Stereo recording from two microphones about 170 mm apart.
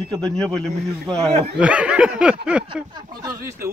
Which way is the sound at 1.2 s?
35° right (ahead or behind).